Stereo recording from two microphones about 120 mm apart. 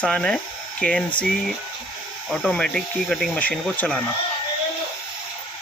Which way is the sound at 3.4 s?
10° left (ahead or behind).